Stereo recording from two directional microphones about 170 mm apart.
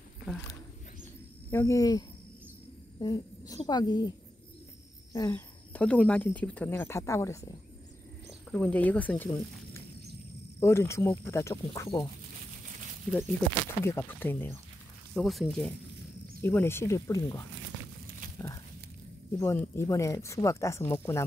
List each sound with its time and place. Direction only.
1.5 s speech: 15° left (ahead or behind)
3.0 s throat clearing: 25° left (ahead or behind)
3.6 s speech: 25° left (ahead or behind)
5.1 s speech: 15° left (ahead or behind)
10.6 s speech: 15° left (ahead or behind)
13.8 s speech: 15° left (ahead or behind)
16.4 s speech: 15° left (ahead or behind)
19.3 s speech: 15° left (ahead or behind)